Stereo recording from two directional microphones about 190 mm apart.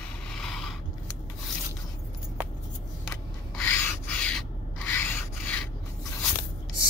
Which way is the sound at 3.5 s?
10° left (ahead or behind).